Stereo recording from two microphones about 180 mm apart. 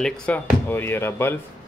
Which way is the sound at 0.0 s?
10° left (ahead or behind).